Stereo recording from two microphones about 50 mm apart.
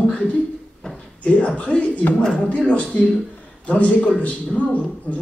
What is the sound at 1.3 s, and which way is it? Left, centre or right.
A man's voice, left.